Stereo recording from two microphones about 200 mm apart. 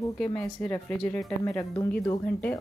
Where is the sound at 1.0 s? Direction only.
5° left (ahead or behind).